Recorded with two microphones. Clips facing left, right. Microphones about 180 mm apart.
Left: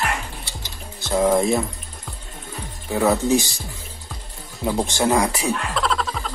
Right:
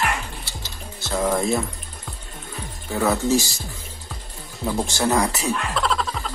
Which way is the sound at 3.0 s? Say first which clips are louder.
Left 2 dB; 15° left (ahead or behind).